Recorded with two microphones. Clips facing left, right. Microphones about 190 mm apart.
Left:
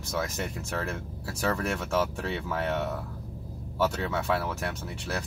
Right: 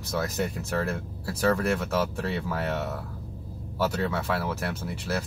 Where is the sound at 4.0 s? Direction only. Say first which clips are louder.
Right 1 dB; centre (ahead or behind).